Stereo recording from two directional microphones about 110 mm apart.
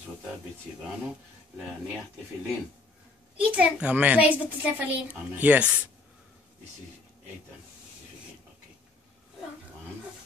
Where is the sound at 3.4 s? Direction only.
10° right (ahead or behind).